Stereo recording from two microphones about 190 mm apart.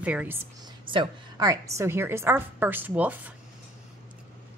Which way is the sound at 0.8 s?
20° right (ahead or behind).